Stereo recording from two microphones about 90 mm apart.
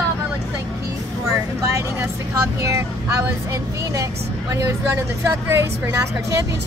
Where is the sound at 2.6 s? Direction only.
35° right (ahead or behind).